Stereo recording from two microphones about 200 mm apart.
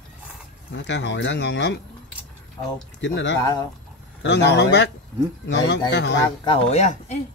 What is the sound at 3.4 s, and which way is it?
Speech, 20° left (ahead or behind).